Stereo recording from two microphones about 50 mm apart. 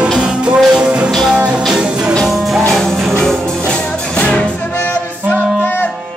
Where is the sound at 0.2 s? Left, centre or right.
Centre.